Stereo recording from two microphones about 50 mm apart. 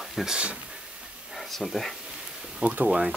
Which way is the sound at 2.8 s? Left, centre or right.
Centre.